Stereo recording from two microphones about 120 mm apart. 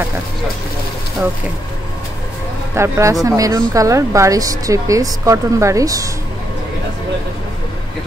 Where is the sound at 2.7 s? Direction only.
25° right (ahead or behind).